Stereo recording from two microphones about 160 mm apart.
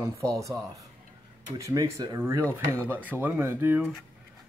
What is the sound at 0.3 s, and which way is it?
Speech, 20° right (ahead or behind).